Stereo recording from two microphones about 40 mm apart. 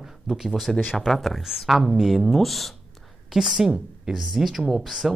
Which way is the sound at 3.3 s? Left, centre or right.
Centre.